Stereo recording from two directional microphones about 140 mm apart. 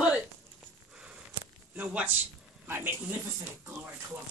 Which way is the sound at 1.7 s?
10° right (ahead or behind).